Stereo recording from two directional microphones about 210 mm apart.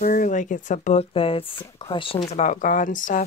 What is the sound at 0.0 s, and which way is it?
Speech, 40° left (ahead or behind).